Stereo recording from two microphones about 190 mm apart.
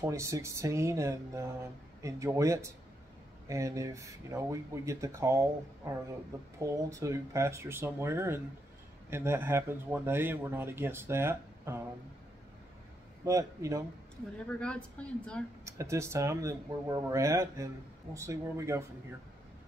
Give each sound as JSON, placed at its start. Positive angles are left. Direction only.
{"t": 0.0, "sound": "speech", "side_deg": -15}
{"t": 13.2, "sound": "speech", "side_deg": -15}
{"t": 14.5, "sound": "a woman's voice", "side_deg": 5}
{"t": 15.6, "sound": "speech", "side_deg": -15}